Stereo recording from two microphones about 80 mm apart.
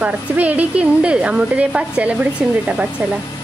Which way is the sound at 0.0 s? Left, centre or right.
Centre.